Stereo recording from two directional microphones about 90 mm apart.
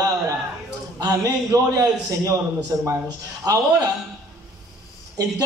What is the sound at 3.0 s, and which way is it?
Speech, 45° right (ahead or behind).